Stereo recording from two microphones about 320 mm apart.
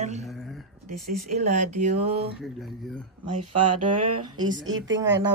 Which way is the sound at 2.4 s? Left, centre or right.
Centre.